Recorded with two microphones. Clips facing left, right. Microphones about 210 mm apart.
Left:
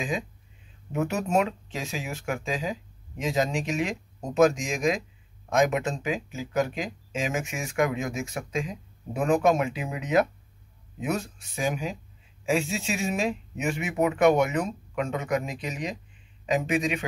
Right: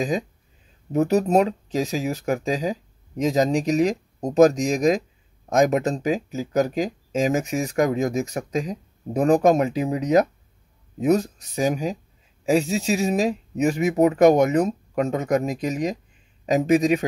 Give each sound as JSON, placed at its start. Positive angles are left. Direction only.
{"t": 0.9, "sound": "speech", "side_deg": -35}